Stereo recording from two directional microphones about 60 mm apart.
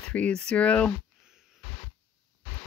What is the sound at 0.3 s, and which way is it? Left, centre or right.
Speech, centre.